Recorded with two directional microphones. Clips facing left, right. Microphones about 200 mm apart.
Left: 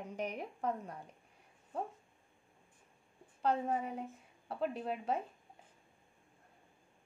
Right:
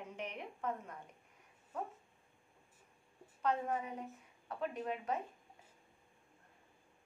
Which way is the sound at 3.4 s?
30° left (ahead or behind).